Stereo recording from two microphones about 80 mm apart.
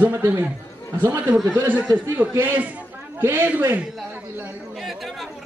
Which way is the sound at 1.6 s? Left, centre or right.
Right.